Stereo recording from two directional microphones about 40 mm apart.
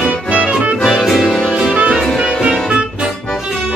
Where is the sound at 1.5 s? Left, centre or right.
Right.